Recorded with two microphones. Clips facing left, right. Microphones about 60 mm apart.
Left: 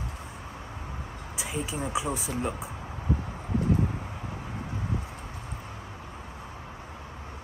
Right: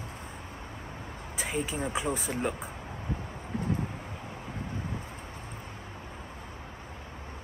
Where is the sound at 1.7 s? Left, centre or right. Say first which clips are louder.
Left 2 dB; right.